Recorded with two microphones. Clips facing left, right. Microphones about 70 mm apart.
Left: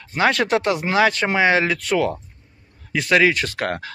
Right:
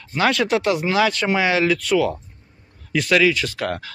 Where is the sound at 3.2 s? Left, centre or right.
Left.